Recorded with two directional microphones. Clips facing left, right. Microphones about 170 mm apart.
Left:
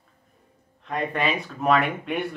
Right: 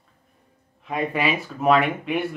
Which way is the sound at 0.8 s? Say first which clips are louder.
Right 2 dB; 5° right (ahead or behind).